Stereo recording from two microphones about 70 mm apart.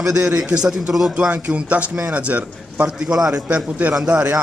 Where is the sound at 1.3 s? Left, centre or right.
Centre.